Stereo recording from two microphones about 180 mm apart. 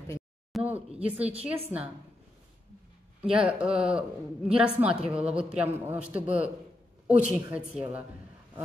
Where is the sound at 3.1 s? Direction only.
5° right (ahead or behind).